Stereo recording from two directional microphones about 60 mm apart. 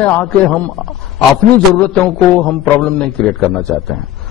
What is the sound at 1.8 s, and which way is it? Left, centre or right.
A man's voice, centre.